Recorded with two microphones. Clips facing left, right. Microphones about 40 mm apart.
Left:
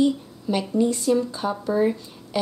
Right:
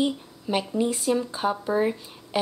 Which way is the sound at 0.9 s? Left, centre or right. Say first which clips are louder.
Left 3 dB; centre.